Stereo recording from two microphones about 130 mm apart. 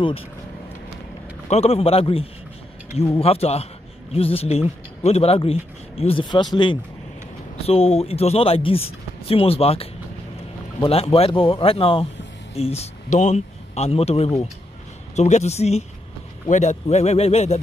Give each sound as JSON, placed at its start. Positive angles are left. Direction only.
{"t": 1.5, "sound": "speech", "side_deg": 50}
{"t": 7.6, "sound": "speech", "side_deg": 50}
{"t": 15.1, "sound": "speech", "side_deg": 60}
{"t": 16.4, "sound": "speech", "side_deg": 65}
{"t": 16.8, "sound": "speech", "side_deg": 55}